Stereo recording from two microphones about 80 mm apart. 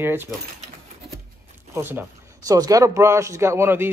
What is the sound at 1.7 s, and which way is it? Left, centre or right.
Speech, right.